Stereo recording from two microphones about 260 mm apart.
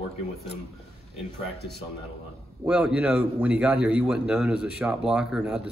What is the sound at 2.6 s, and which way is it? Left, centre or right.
A man's voice, centre.